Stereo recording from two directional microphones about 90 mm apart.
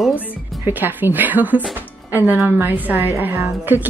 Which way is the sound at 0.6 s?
25° right (ahead or behind).